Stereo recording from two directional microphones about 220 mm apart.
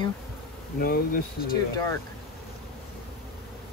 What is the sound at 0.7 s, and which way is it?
Speech, 40° left (ahead or behind).